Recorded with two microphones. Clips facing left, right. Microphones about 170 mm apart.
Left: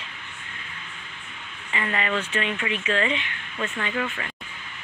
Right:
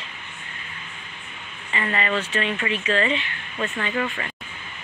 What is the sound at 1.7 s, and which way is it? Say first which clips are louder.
Speech: right 2 dB; 10° left (ahead or behind).